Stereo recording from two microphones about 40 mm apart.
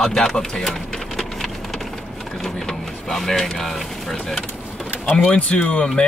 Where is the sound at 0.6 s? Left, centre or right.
Centre.